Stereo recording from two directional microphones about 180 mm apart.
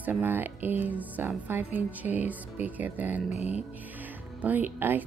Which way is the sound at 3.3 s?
40° left (ahead or behind).